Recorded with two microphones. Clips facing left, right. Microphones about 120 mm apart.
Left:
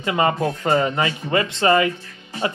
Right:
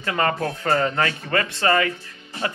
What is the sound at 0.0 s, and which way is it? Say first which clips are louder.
A man's voice: left 3 dB; 15° left (ahead or behind).